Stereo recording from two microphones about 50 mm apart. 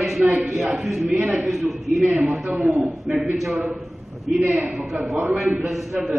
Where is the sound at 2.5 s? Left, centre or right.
Right.